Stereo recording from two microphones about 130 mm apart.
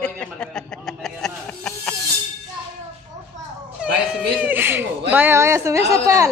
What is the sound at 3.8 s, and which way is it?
Cat, 10° right (ahead or behind).